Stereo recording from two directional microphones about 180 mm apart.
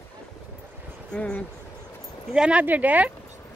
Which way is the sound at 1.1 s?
5° left (ahead or behind).